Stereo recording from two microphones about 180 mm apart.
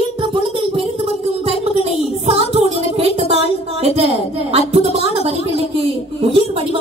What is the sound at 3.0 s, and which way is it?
A woman's voice, 35° right (ahead or behind).